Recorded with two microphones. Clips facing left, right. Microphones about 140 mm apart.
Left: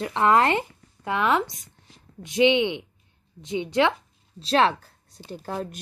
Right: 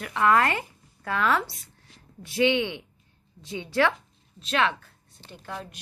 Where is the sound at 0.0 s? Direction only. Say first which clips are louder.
Left 2 dB; 25° left (ahead or behind).